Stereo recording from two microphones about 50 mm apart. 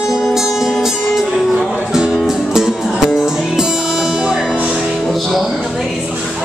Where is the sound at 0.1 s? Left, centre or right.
Centre.